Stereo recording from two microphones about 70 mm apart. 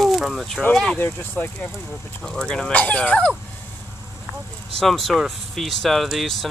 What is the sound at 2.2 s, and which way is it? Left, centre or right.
Speech, centre.